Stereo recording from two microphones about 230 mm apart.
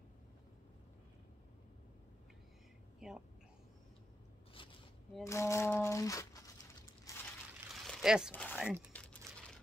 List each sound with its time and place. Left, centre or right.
3.0 s a sound: centre
4.6 s zipper: left
5.2 s crumpling: centre
7.8 s a sound: centre
8.3 s speech: centre
8.9 s crumpling: centre